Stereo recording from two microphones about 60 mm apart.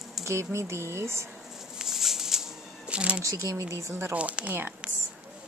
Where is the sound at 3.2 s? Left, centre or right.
Right.